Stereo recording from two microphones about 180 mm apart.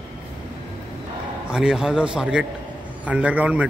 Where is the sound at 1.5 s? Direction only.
5° right (ahead or behind).